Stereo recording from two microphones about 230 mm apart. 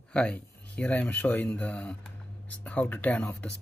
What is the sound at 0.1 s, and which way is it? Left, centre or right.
Speech, centre.